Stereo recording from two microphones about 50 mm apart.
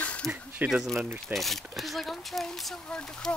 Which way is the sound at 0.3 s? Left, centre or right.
Right.